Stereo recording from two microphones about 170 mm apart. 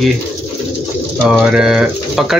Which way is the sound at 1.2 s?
Centre (ahead or behind).